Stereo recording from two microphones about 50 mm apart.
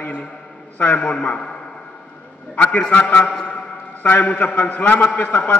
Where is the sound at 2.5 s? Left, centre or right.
Left.